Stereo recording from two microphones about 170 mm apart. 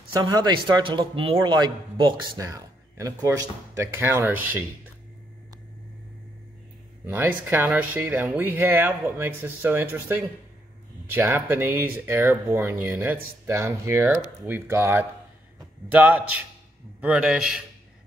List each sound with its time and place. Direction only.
0.2 s speech: 25° right (ahead or behind)
7.1 s a man's voice: 10° right (ahead or behind)